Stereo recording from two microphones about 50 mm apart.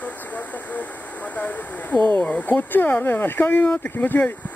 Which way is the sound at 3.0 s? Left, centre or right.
Left.